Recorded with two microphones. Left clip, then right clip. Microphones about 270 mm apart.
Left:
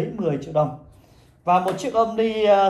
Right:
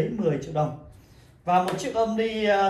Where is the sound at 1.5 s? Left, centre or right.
Centre.